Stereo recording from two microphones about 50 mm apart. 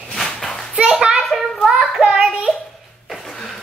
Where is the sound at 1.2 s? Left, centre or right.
Centre.